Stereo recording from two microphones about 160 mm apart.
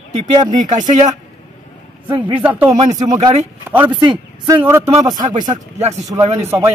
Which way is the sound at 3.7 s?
5° right (ahead or behind).